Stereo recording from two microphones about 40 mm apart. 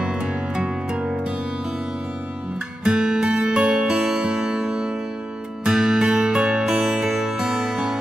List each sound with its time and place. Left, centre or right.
2.8 s music: centre
3.8 s music: centre